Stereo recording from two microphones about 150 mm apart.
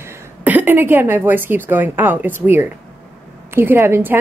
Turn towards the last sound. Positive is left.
turn(degrees=-15)  # may be behind; listen again after turning